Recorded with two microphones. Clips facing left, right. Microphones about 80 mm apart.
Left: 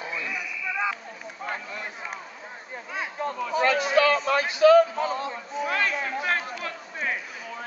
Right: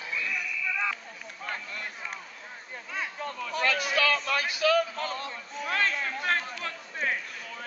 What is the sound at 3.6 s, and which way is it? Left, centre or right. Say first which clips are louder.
A man's voice: left 6 dB; left.